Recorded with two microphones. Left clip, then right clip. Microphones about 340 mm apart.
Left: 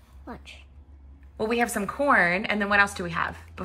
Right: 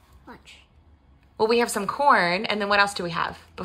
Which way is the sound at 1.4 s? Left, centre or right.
Centre.